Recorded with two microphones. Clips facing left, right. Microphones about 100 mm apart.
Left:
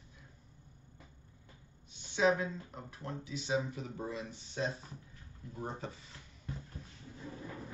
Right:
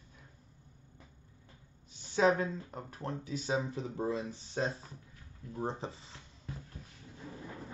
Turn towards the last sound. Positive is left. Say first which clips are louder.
# right 3 dB
turn(degrees=-25)  # may be behind; listen again after turning